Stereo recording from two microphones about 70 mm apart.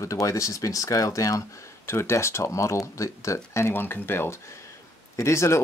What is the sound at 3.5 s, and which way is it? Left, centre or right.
Speech, left.